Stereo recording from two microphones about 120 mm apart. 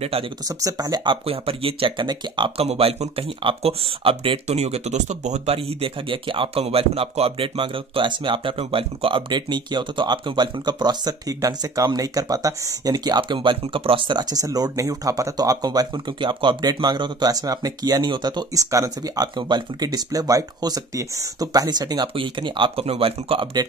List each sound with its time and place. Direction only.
0.7 s speech: 30° right (ahead or behind)
6.6 s speech: 55° right (ahead or behind)